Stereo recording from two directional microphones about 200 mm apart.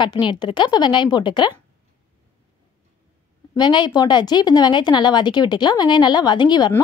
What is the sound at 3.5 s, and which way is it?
Speech, 20° left (ahead or behind).